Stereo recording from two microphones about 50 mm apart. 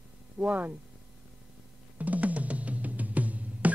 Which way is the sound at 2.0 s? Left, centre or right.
Right.